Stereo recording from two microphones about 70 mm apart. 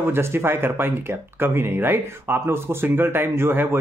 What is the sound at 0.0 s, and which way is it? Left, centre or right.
Speech, right.